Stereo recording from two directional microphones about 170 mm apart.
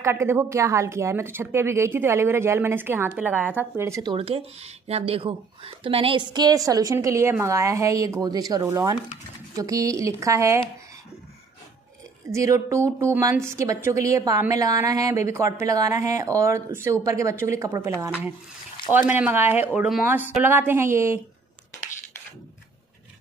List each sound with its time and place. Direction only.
0.0 s a woman's voice: 15° right (ahead or behind)
12.3 s speech: 15° right (ahead or behind)